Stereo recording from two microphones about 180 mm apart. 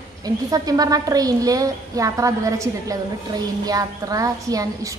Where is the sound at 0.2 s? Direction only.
20° right (ahead or behind).